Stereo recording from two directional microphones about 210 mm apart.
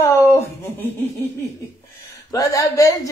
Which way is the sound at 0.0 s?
15° left (ahead or behind).